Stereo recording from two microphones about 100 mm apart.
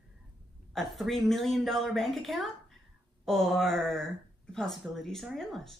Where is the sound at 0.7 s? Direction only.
Centre (ahead or behind).